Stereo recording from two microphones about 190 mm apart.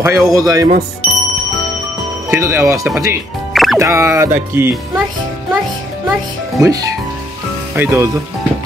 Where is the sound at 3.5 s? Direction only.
Centre (ahead or behind).